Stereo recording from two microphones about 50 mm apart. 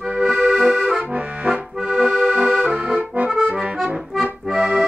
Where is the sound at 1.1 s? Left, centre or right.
Right.